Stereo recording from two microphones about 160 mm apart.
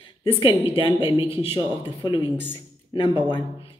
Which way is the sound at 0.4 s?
35° left (ahead or behind).